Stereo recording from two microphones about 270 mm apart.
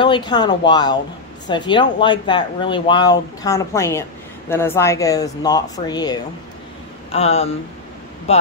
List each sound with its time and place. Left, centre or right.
0.0 s speech: centre